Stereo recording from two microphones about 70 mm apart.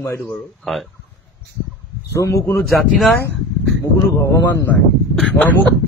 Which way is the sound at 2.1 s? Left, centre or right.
Left.